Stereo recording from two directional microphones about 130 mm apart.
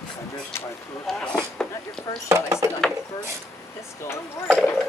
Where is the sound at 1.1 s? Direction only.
10° left (ahead or behind).